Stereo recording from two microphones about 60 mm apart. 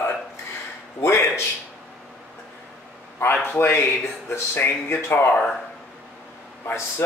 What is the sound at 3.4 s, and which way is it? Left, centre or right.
Speech, left.